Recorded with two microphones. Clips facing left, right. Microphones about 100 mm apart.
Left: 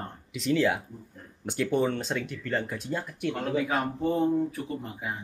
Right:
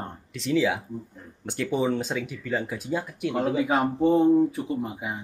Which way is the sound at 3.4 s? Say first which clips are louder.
Right 5 dB; 15° right (ahead or behind).